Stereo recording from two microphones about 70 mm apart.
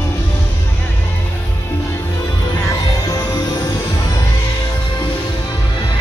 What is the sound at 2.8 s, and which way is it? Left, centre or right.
Music, left.